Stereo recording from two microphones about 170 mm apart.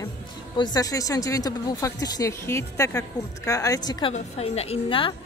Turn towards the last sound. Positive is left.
turn(degrees=30)  # may be behind; listen again after turning